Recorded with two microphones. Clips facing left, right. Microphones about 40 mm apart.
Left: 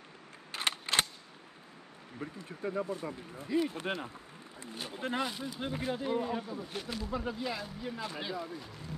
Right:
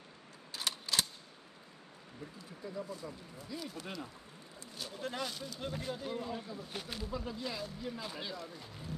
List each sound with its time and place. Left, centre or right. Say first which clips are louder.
0.5 s a sound: left 5 dB; left
2.1 s speech: left 7 dB; left
4.6 s speech: left 4 dB; left
6.7 s speech: left 2 dB; centre
7.1 s speech: left 5 dB; left